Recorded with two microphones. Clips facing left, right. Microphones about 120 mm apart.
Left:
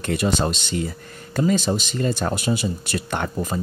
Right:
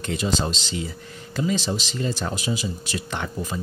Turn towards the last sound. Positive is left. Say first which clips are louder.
# left 4 dB
turn(degrees=45)  # may be behind; listen again after turning